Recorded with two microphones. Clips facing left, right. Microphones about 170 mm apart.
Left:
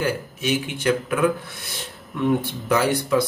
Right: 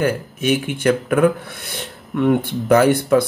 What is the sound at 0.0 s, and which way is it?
Speech, 55° right (ahead or behind).